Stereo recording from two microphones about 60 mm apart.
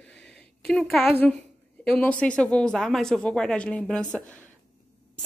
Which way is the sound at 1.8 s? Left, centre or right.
Centre.